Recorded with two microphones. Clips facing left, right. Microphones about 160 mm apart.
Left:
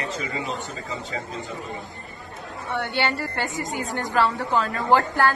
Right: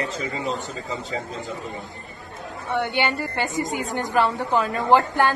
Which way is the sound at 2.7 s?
15° right (ahead or behind).